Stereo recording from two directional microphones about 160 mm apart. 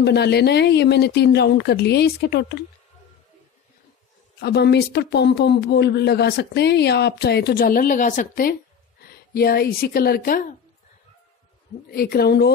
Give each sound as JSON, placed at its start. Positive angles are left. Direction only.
{"t": 0.0, "sound": "speech", "side_deg": 90}
{"t": 4.4, "sound": "speech", "side_deg": 90}
{"t": 9.3, "sound": "a woman's voice", "side_deg": 70}
{"t": 11.9, "sound": "a woman's voice", "side_deg": 75}